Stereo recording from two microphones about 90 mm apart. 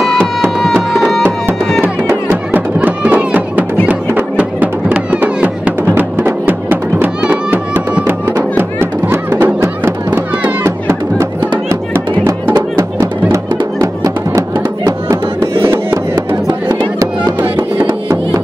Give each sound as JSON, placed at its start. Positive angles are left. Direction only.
{"t": 0.9, "sound": "music", "side_deg": 0}
{"t": 2.0, "sound": "music", "side_deg": -20}
{"t": 14.9, "sound": "music", "side_deg": -40}
{"t": 16.4, "sound": "music", "side_deg": -50}
{"t": 17.7, "sound": "music", "side_deg": -25}